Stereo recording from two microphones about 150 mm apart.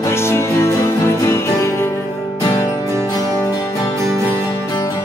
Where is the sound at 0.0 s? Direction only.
15° left (ahead or behind).